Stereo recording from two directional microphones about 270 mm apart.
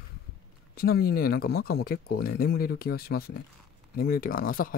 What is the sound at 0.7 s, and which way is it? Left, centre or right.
Speech, left.